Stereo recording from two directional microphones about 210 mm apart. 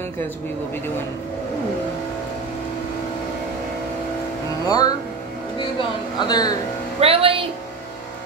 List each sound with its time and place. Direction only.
4.6 s speech: 20° left (ahead or behind)
7.0 s speech: 25° right (ahead or behind)